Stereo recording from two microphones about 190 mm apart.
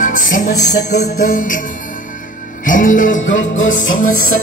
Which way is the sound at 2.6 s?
45° left (ahead or behind).